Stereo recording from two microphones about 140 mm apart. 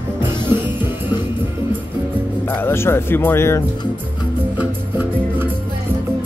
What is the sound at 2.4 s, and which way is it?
Speech, 15° left (ahead or behind).